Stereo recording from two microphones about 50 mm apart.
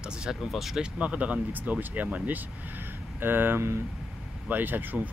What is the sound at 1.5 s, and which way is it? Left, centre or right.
Speech, right.